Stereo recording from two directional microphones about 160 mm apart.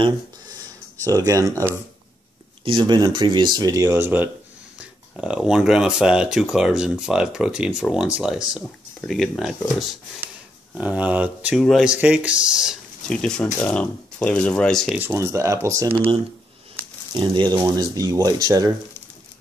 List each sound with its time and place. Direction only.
1.0 s speech: 20° right (ahead or behind)
2.6 s speech: 30° right (ahead or behind); by 12.7 s 5° right (ahead or behind)
13.1 s speech: 5° left (ahead or behind)
15.0 s speech: 15° right (ahead or behind)
17.1 s speech: 30° right (ahead or behind)